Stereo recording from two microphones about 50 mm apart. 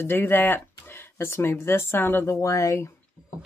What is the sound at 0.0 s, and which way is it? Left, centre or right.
Speech, left.